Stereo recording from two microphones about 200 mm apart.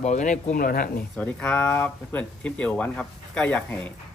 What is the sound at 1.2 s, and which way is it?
Speech, 5° left (ahead or behind).